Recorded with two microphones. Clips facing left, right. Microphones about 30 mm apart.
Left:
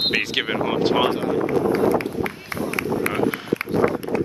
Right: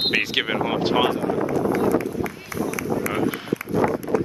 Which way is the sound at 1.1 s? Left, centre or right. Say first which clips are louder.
Left 2 dB; left.